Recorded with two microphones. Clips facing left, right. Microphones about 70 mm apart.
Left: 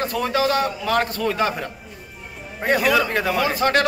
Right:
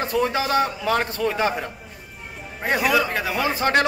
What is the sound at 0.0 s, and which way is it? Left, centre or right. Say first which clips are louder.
Speech: left 1 dB; right.